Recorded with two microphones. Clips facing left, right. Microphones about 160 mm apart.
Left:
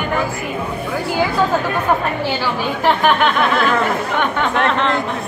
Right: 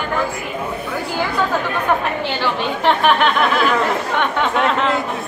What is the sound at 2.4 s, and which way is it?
Speech, 5° left (ahead or behind).